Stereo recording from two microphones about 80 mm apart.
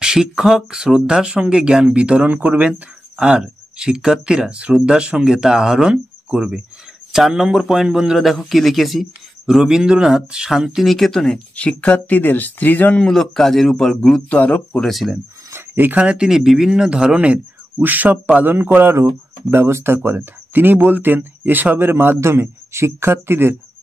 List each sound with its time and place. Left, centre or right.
0.0 s a man's voice: centre
11.5 s speech: centre
13.0 s a man's voice: centre
14.3 s speech: centre
14.9 s a man's voice: centre
15.5 s speech: right